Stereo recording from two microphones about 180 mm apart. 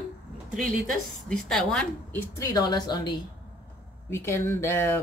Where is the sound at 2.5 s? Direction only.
25° left (ahead or behind).